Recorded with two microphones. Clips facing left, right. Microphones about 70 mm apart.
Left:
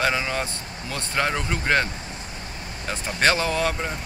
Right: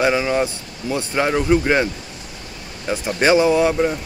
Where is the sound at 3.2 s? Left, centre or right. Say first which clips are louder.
Right 7 dB; centre.